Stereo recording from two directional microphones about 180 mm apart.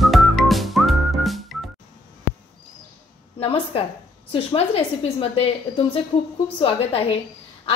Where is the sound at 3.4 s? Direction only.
30° left (ahead or behind).